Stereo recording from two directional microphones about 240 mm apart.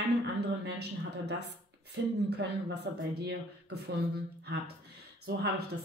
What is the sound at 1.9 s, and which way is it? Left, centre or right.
Speech, right.